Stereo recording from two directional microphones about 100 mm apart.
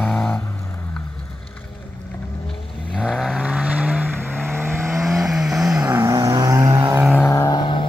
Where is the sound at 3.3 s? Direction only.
10° right (ahead or behind).